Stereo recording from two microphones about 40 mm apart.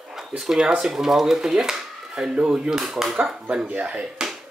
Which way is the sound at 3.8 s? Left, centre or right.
Right.